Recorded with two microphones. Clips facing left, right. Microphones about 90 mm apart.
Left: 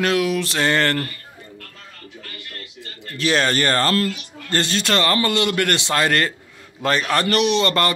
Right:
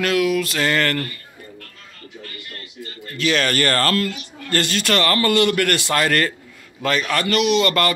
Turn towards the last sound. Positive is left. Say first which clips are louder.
# right 1 dB
turn(degrees=25)  # may be behind; listen again after turning